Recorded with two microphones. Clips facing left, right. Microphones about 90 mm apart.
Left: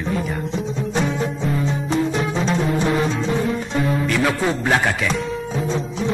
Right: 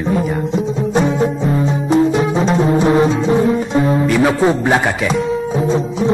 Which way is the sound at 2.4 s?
30° right (ahead or behind).